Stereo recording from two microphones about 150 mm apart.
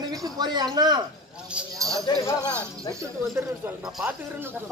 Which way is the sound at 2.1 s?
30° left (ahead or behind).